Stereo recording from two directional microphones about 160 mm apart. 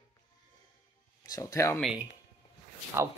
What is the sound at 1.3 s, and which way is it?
Speech, 20° left (ahead or behind).